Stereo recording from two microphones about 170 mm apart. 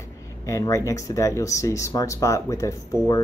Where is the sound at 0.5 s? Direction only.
20° left (ahead or behind).